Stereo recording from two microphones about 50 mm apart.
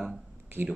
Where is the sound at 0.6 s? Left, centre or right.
Right.